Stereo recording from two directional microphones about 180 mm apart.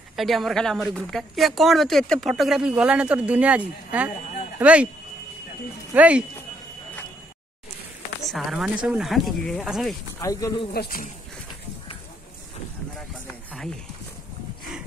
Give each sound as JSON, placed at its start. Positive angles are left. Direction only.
{"t": 0.1, "sound": "speech", "side_deg": 0}
{"t": 5.9, "sound": "speech", "side_deg": -5}
{"t": 8.3, "sound": "speech", "side_deg": 0}
{"t": 10.2, "sound": "speech", "side_deg": 20}
{"t": 10.7, "sound": "speech", "side_deg": 55}